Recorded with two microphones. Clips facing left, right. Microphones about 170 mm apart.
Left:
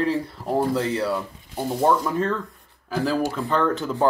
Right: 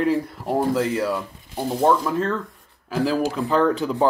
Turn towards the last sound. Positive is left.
turn(degrees=0)  # may be behind; listen again after turning